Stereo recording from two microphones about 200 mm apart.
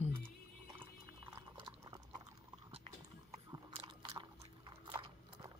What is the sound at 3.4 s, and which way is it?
Biting, 20° right (ahead or behind).